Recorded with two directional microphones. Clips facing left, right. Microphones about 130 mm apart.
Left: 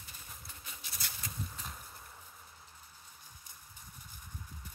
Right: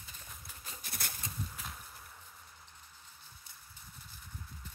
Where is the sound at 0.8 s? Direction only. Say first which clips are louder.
Right 3 dB; 55° right (ahead or behind).